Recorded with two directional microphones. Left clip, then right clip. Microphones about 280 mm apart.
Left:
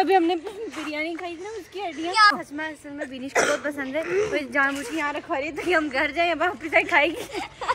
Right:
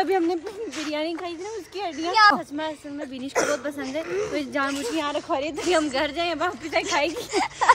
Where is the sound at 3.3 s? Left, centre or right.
Left.